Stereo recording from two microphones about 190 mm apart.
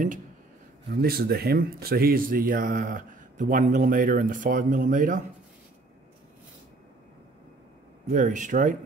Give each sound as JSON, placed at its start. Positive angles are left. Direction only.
{"t": 0.8, "sound": "speech", "side_deg": -55}
{"t": 8.1, "sound": "speech", "side_deg": -40}